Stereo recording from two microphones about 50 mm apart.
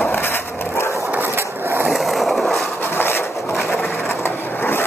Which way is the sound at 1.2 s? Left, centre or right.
Right.